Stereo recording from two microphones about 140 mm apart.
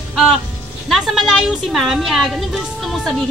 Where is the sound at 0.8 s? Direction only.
Centre (ahead or behind).